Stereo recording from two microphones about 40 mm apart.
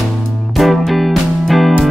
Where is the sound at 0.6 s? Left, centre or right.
Centre.